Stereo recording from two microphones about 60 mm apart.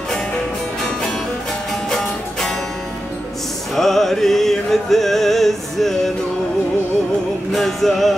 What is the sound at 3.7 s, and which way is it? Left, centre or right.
Music, centre.